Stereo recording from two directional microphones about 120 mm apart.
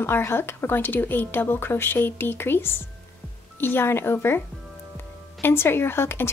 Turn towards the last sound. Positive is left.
turn(degrees=20)  # may be behind; listen again after turning